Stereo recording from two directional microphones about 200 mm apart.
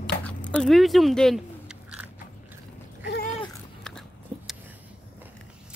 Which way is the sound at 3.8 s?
5° left (ahead or behind).